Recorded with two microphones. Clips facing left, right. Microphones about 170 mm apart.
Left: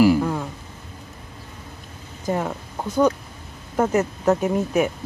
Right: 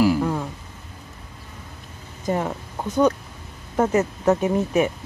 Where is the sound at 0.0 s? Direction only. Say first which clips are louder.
Left 2 dB; centre (ahead or behind).